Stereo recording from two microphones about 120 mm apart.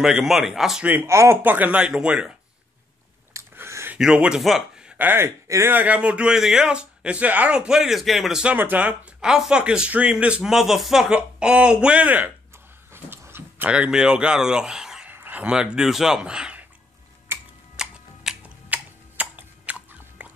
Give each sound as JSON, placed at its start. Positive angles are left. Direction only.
{"t": 0.0, "sound": "speech", "side_deg": -5}
{"t": 0.8, "sound": "a man's voice", "side_deg": -20}
{"t": 3.3, "sound": "a sound", "side_deg": -20}
{"t": 4.0, "sound": "a man's voice", "side_deg": -5}
{"t": 17.3, "sound": "tick-tock", "side_deg": -20}
{"t": 17.7, "sound": "a sound", "side_deg": -5}